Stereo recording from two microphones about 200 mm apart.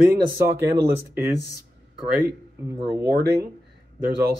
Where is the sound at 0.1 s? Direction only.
15° right (ahead or behind).